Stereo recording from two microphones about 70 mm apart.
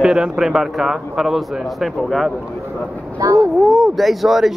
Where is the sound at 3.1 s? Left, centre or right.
Right.